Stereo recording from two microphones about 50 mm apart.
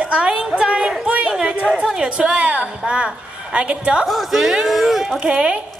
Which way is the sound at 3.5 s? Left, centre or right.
Right.